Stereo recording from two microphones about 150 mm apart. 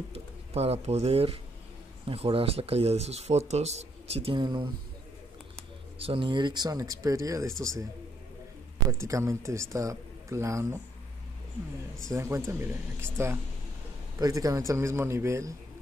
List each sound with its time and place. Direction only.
0.1 s speech: 45° right (ahead or behind)
5.9 s speech: 40° right (ahead or behind); by 7.9 s 20° right (ahead or behind)
8.9 s speech: 20° right (ahead or behind)
12.1 s speech: 20° right (ahead or behind)